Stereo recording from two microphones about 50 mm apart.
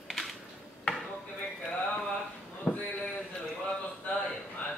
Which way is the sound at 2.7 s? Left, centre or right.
Left.